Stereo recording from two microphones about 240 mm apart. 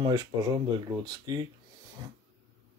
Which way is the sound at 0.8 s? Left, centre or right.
Centre.